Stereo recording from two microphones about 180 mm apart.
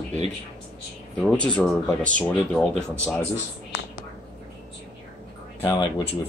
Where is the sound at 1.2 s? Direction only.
5° left (ahead or behind).